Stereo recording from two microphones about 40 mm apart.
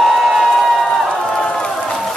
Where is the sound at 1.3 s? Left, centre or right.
Centre.